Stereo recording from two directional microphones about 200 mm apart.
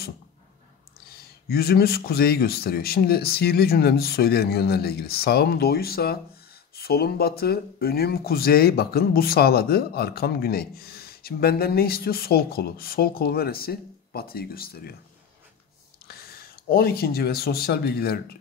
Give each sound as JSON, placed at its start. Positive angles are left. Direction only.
{"t": 1.1, "sound": "speech", "side_deg": 50}
{"t": 16.1, "sound": "speech", "side_deg": 50}